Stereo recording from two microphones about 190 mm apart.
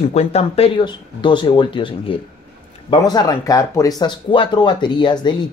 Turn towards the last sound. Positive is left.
turn(degrees=25)  # may be behind; listen again after turning